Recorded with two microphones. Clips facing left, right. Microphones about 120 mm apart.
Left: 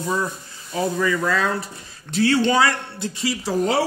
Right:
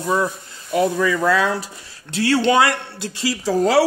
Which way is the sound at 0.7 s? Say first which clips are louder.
Right 4 dB; 90° right.